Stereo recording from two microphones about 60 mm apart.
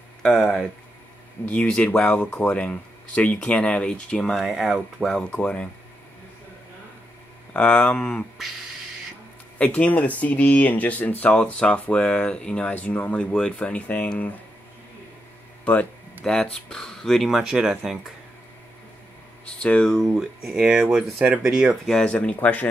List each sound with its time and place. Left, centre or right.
0.2 s speech: centre
1.5 s speech: centre
1.9 s speech: left
4.3 s speech: centre
5.3 s speech: left
7.5 s speech: centre
9.6 s speech: left
15.6 s speech: left
16.3 s speech: centre
17.3 s speech: centre
19.6 s speech: left
20.2 s speech: centre
22.0 s speech: centre